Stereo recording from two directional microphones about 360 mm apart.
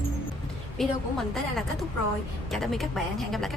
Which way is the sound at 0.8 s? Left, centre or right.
Centre.